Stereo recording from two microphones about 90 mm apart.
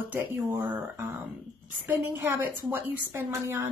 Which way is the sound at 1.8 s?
25° right (ahead or behind).